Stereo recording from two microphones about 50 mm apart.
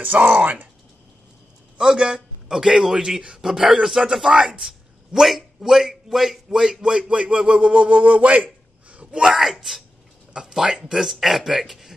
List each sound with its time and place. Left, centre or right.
0.4 s speech: right
1.8 s a man's voice: centre
9.2 s speech: centre